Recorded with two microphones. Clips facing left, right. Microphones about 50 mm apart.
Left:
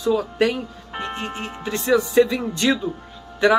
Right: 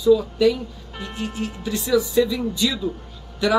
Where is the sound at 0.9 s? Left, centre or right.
Left.